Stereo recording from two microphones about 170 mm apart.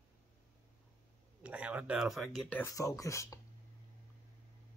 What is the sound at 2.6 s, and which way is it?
Speech, 20° left (ahead or behind).